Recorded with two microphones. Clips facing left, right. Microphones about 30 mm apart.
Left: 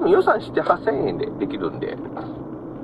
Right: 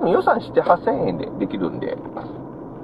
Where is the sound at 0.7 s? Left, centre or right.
Centre.